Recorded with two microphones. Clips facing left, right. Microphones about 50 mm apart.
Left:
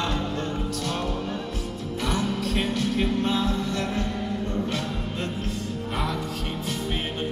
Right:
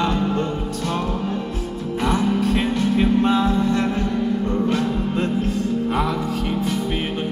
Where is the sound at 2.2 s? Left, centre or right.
Right.